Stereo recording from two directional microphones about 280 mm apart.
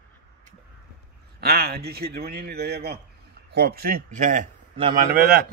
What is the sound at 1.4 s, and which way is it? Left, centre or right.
A man's voice, right.